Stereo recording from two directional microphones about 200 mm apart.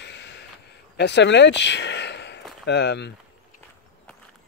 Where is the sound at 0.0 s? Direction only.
60° left (ahead or behind).